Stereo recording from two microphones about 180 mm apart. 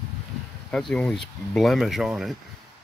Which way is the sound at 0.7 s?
5° left (ahead or behind).